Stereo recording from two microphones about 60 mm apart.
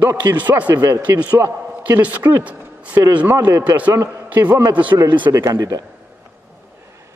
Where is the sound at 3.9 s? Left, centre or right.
Right.